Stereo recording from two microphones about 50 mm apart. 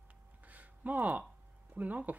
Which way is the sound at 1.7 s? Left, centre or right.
Right.